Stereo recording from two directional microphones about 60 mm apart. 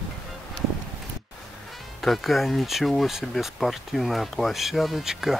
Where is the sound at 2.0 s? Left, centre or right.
Centre.